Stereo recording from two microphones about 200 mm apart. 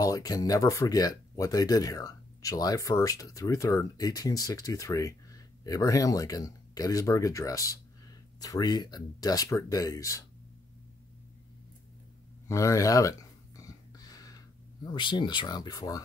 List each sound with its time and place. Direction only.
0.0 s speech: 20° left (ahead or behind)
12.4 s speech: 15° left (ahead or behind)
13.6 s a sound: 20° left (ahead or behind)
14.9 s speech: 25° left (ahead or behind)